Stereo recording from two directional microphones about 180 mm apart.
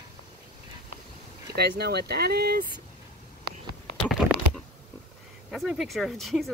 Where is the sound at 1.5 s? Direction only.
65° right (ahead or behind).